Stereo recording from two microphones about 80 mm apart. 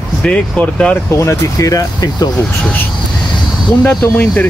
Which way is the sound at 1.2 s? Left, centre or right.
Left.